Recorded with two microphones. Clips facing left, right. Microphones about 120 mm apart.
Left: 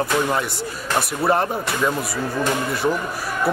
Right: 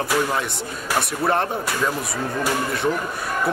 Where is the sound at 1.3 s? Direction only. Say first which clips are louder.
Left 3 dB; 5° left (ahead or behind).